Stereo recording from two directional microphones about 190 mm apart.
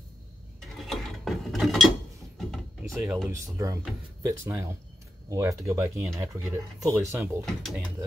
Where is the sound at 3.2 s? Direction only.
15° right (ahead or behind).